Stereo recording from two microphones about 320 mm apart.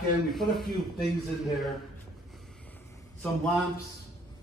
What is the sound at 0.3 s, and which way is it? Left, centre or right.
Speech, centre.